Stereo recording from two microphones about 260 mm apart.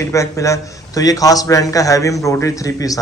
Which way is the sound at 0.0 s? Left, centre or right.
Centre.